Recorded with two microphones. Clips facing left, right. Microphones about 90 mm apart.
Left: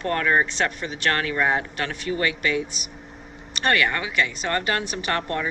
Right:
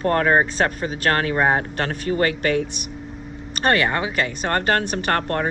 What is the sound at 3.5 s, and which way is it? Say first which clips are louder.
A woman's voice: right 3 dB; 35° right (ahead or behind).